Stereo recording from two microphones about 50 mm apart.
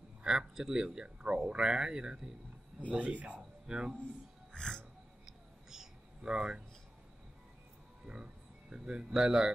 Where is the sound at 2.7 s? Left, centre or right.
Right.